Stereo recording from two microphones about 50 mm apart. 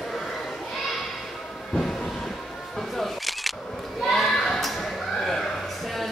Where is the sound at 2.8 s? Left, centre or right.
Centre.